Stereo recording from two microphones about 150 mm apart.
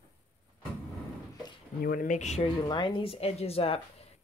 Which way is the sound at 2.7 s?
30° left (ahead or behind).